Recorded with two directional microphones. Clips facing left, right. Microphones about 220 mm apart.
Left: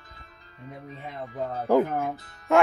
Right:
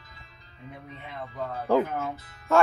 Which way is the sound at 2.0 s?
15° left (ahead or behind).